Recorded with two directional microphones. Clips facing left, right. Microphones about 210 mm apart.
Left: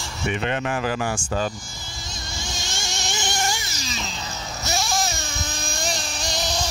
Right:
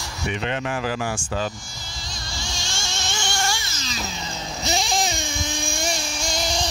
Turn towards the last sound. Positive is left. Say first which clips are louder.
# right 1 dB
turn(degrees=-10)  # may be behind; listen again after turning